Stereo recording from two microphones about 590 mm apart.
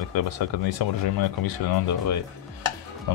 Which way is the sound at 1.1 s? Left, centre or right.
Left.